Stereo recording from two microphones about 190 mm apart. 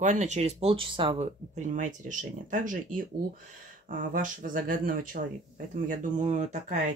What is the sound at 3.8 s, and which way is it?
Speech, 45° right (ahead or behind).